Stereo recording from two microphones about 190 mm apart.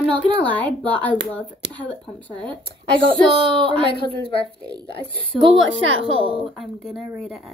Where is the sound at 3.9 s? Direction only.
30° left (ahead or behind).